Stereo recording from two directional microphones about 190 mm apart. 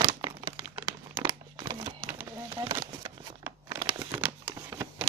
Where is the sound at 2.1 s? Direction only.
15° right (ahead or behind).